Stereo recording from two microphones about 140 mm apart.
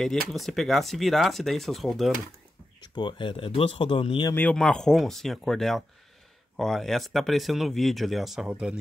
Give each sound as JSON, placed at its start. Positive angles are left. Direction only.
{"t": 0.0, "sound": "speech", "side_deg": 0}
{"t": 3.0, "sound": "speech", "side_deg": 35}
{"t": 4.4, "sound": "speech", "side_deg": 10}